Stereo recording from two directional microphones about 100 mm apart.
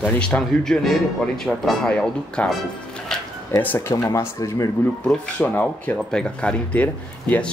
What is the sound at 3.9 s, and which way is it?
Speech, 30° left (ahead or behind).